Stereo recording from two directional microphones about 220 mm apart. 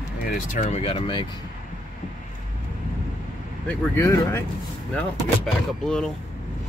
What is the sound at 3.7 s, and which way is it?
Speech, 10° left (ahead or behind).